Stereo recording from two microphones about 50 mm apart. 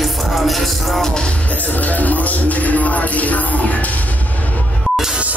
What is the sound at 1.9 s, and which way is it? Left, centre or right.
Music, left.